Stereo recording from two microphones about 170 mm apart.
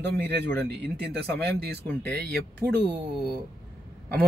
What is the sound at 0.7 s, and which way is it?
Speech, 75° right (ahead or behind).